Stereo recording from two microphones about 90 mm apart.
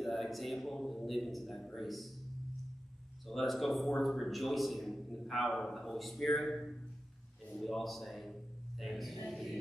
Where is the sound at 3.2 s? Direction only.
Centre (ahead or behind).